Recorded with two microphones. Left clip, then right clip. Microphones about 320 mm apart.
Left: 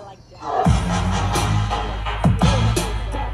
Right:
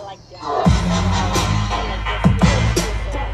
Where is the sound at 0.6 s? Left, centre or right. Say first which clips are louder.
Right 2 dB; left.